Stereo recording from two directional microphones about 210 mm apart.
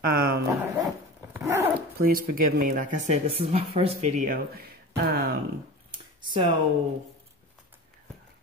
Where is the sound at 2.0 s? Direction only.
40° right (ahead or behind).